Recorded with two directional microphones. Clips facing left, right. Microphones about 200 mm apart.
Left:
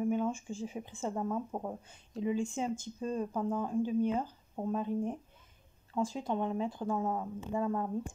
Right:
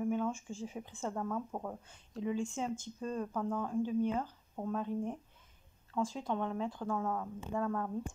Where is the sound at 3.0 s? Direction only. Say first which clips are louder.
Left 3 dB; 15° left (ahead or behind).